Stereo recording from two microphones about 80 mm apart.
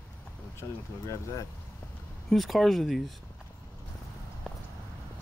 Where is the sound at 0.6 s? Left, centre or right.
Left.